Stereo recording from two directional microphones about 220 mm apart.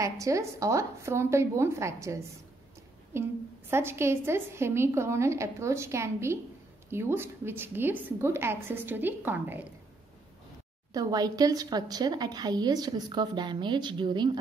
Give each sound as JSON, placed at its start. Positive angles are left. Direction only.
{"t": 0.0, "sound": "a woman's voice", "side_deg": -15}
{"t": 10.9, "sound": "speech", "side_deg": -15}